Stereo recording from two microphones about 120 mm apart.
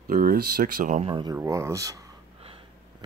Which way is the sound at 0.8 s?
90° right.